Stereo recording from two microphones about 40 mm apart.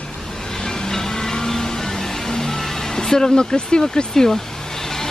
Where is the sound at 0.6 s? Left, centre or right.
Centre.